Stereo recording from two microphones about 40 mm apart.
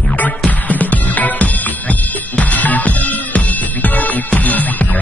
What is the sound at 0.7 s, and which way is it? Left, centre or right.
Music, left.